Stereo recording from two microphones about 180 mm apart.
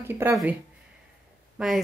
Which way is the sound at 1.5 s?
Centre (ahead or behind).